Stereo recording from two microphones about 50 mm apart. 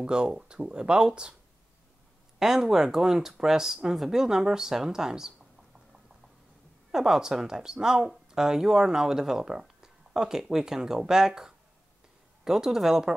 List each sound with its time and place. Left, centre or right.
0.0 s speech: centre
2.3 s speech: centre
6.9 s speech: centre